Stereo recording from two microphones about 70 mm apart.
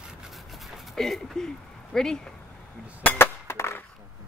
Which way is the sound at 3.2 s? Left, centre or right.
Left.